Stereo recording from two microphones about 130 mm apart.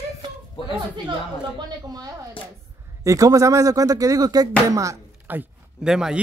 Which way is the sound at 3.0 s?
25° right (ahead or behind).